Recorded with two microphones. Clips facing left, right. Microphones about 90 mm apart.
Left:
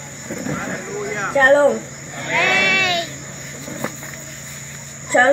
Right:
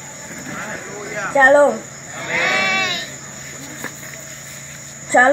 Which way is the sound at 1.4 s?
25° right (ahead or behind).